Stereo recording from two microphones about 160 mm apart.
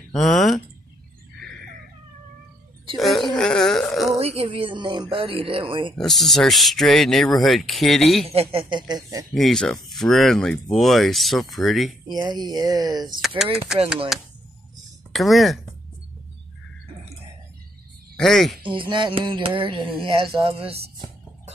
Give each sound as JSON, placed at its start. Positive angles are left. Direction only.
{"t": 0.1, "sound": "speech", "side_deg": 0}
{"t": 1.4, "sound": "a sound", "side_deg": 5}
{"t": 3.0, "sound": "a sound", "side_deg": 0}
{"t": 4.2, "sound": "a sound", "side_deg": -40}
{"t": 5.9, "sound": "speech", "side_deg": 0}
{"t": 8.3, "sound": "speech", "side_deg": -35}
{"t": 9.3, "sound": "speech", "side_deg": 0}
{"t": 12.1, "sound": "speech", "side_deg": -25}
{"t": 14.1, "sound": "speech", "side_deg": 0}
{"t": 18.1, "sound": "speech", "side_deg": 0}
{"t": 18.6, "sound": "a sound", "side_deg": -30}
{"t": 20.3, "sound": "music", "side_deg": -35}